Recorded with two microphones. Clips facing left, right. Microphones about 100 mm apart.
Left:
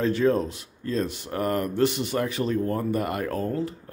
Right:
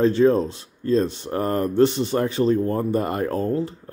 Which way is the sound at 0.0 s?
30° right (ahead or behind).